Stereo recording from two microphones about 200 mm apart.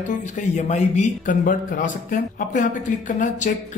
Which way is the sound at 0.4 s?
35° left (ahead or behind).